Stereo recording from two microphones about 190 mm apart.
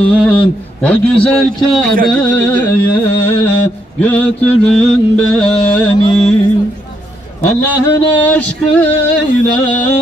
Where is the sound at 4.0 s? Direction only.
10° left (ahead or behind).